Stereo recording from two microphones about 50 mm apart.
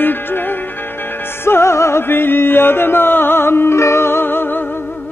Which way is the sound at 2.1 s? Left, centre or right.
Left.